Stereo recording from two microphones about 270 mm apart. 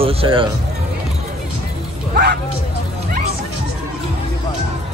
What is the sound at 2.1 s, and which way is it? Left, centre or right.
Speech, right.